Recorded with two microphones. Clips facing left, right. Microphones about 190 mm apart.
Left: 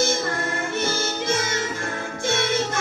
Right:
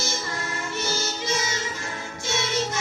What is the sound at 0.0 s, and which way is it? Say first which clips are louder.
Music: left 8 dB; 55° left (ahead or behind).